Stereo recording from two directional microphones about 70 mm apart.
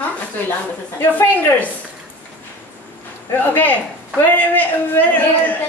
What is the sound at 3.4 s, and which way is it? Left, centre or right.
Speech, left.